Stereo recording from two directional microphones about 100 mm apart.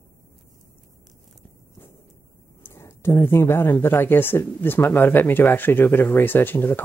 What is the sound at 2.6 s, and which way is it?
Speech, 25° left (ahead or behind).